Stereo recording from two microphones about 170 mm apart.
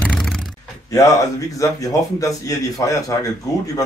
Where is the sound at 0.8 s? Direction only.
20° left (ahead or behind).